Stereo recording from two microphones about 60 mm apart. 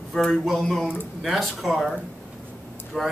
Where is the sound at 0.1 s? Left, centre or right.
Centre.